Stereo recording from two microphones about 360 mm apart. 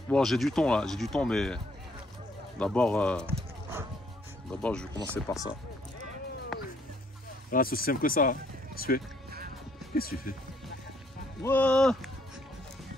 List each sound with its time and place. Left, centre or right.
0.1 s speech: centre
2.6 s speech: centre
6.5 s music: centre
7.5 s speech: left
11.4 s speech: centre